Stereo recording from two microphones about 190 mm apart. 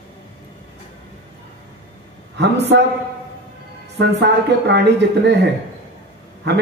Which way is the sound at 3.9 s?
65° right (ahead or behind).